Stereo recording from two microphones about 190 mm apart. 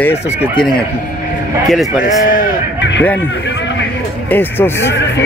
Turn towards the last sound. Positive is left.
turn(degrees=10)  # may be behind; listen again after turning